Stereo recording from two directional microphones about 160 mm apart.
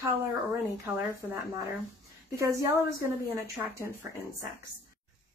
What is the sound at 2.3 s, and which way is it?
Speech, 15° right (ahead or behind).